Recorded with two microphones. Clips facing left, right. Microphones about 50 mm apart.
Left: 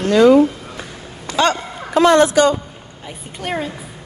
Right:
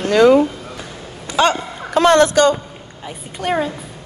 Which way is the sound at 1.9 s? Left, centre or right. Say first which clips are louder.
Even; right.